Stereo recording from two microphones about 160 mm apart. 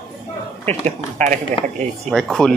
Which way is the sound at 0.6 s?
45° right (ahead or behind).